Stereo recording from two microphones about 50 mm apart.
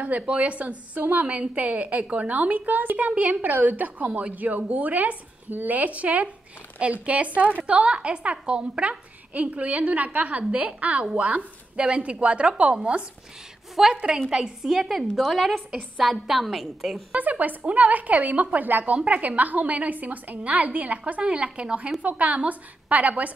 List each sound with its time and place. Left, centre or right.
0.0 s a woman's voice: right
13.8 s a woman's voice: centre
17.1 s a woman's voice: right